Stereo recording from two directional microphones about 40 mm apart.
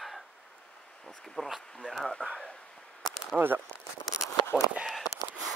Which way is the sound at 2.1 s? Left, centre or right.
Left.